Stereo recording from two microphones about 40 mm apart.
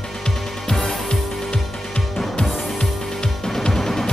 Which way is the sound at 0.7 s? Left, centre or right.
Centre.